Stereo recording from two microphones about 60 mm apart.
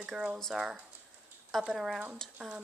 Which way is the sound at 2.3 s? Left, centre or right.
Centre.